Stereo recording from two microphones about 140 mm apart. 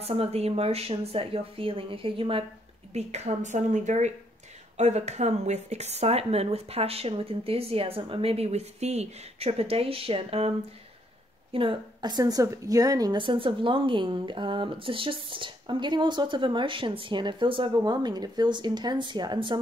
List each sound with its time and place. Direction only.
0.0 s speech: 45° right (ahead or behind)
2.9 s a woman's voice: 50° right (ahead or behind)
11.5 s a woman's voice: 40° right (ahead or behind)